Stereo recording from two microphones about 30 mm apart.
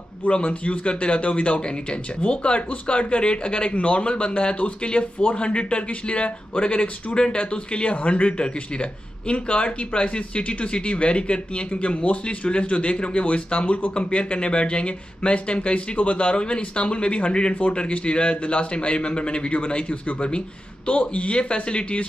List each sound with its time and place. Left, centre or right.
0.3 s a man's voice: left
19.5 s a man's voice: left